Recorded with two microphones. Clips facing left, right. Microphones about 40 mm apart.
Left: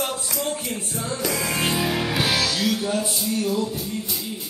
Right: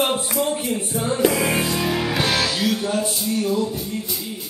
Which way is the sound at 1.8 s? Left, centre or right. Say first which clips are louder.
Right 2 dB; centre.